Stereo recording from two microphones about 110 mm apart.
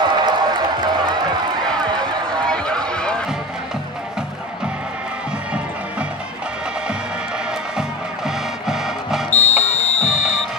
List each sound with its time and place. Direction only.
0.0 s a sound: 40° right (ahead or behind)
2.4 s run: 5° left (ahead or behind)
2.9 s music: 10° left (ahead or behind)
8.6 s music: 5° right (ahead or behind)
9.3 s music: 80° left